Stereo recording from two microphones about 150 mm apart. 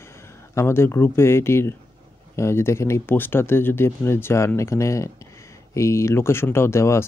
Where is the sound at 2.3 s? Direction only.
15° left (ahead or behind).